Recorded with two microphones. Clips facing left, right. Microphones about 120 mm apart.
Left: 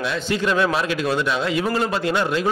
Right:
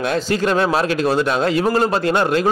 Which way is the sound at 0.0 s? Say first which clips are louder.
Right 4 dB; 45° right (ahead or behind).